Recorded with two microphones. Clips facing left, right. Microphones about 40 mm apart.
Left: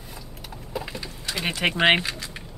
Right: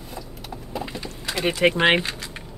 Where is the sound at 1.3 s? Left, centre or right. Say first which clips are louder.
Right 5 dB; centre.